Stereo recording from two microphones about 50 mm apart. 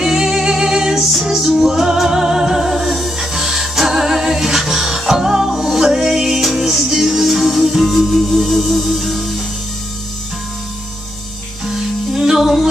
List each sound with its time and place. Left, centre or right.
0.0 s music: centre
11.6 s music: centre